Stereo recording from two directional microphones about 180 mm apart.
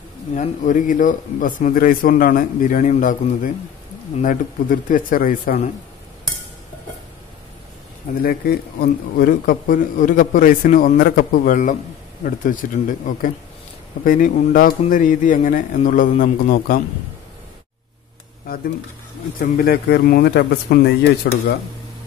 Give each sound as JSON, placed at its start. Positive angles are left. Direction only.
{"t": 0.4, "sound": "a man's voice", "side_deg": 45}
{"t": 8.2, "sound": "a man's voice", "side_deg": 55}
{"t": 19.4, "sound": "a man's voice", "side_deg": 55}